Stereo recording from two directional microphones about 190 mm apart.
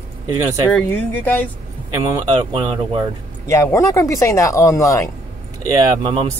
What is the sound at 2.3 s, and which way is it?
Speech, 25° right (ahead or behind).